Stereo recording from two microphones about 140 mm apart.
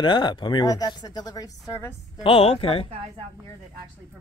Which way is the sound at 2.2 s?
45° left (ahead or behind).